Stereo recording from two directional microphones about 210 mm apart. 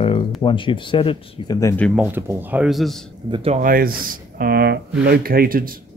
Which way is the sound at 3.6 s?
40° right (ahead or behind).